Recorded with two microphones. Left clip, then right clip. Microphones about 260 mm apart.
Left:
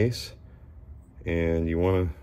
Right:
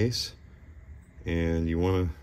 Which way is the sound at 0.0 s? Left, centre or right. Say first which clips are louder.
Left 2 dB; centre.